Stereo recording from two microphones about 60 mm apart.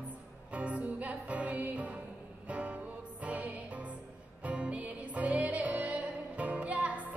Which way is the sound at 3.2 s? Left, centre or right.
Right.